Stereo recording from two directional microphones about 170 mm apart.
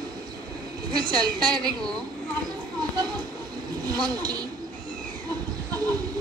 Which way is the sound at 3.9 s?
25° right (ahead or behind).